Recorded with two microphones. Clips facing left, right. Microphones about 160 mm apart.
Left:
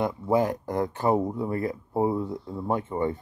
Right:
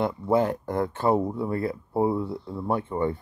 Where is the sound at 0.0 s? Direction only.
15° left (ahead or behind).